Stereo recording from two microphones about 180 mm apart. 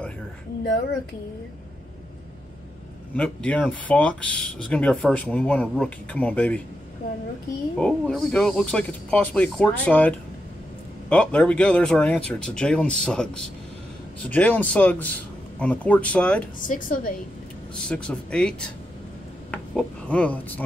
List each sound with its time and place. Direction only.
3.2 s speech: 5° left (ahead or behind)
7.8 s speech: 5° left (ahead or behind)
16.5 s a woman's voice: 50° left (ahead or behind)
17.7 s speech: 5° left (ahead or behind)
19.5 s speech: 5° left (ahead or behind)